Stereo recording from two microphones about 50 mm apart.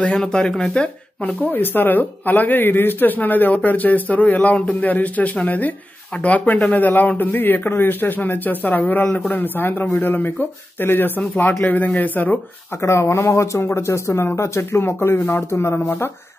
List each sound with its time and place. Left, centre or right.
0.2 s speech: centre
1.2 s speech: left
11.6 s speech: left
12.8 s speech: left
13.7 s speech: left
14.6 s speech: left